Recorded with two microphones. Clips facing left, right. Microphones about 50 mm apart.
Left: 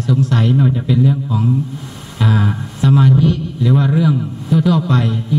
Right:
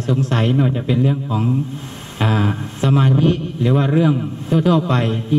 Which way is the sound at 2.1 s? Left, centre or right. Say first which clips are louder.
Left 1 dB; right.